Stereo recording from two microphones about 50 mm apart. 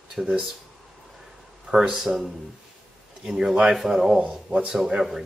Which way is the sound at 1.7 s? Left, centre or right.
Centre.